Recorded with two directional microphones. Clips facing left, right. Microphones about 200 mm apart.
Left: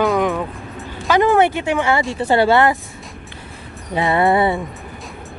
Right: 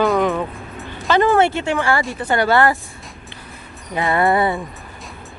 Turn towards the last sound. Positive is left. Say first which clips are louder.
# left 2 dB
turn(degrees=25)  # may be behind; listen again after turning